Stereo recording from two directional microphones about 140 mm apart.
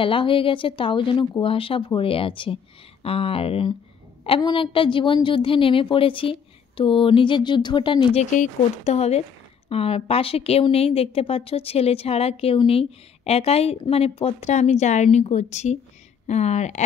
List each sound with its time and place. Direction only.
0.0 s a woman's voice: 40° left (ahead or behind)
8.2 s a woman's voice: 55° left (ahead or behind)